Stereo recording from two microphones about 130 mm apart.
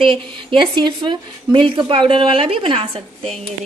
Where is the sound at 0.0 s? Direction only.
40° right (ahead or behind).